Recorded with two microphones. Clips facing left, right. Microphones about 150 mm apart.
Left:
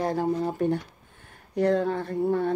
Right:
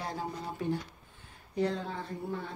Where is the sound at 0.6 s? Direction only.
55° left (ahead or behind).